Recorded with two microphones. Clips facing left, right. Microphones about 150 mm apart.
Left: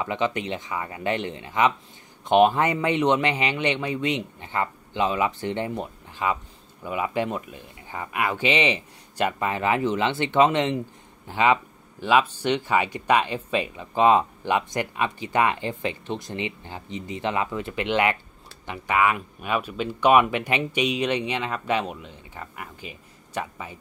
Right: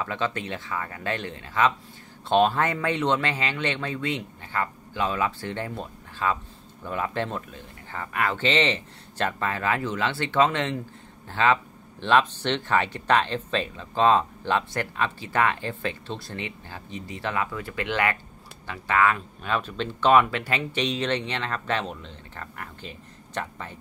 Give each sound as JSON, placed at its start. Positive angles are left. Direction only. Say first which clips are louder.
{"t": 0.0, "sound": "speech", "louder": "left 3 dB", "side_deg": 15}